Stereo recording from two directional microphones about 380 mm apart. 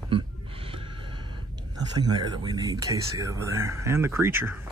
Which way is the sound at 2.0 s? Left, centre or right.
Centre.